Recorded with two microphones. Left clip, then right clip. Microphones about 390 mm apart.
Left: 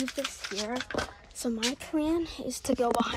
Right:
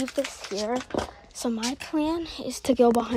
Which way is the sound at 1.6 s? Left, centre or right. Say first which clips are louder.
Right 1 dB; centre.